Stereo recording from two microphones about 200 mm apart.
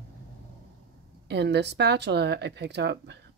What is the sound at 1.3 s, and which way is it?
Speech, 60° right (ahead or behind).